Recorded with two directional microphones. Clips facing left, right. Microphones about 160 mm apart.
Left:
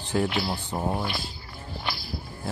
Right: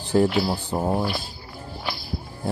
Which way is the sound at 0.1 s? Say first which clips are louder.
Right 6 dB; 35° right (ahead or behind).